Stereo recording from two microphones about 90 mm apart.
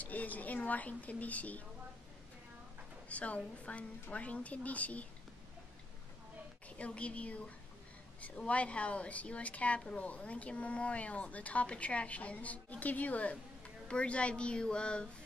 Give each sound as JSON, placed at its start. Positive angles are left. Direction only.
{"t": 0.0, "sound": "a woman's voice", "side_deg": 15}
{"t": 3.1, "sound": "a woman's voice", "side_deg": 15}
{"t": 6.8, "sound": "a woman's voice", "side_deg": 15}